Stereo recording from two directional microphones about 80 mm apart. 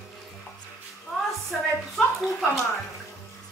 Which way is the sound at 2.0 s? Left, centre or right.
Centre.